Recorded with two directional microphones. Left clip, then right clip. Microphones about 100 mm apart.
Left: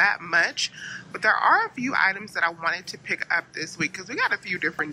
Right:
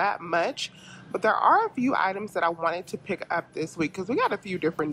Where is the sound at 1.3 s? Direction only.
25° left (ahead or behind).